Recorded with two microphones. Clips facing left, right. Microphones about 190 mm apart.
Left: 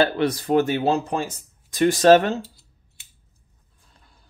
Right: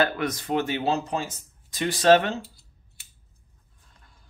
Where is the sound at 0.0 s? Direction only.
30° left (ahead or behind).